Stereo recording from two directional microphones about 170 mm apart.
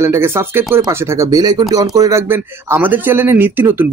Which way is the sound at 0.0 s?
15° right (ahead or behind).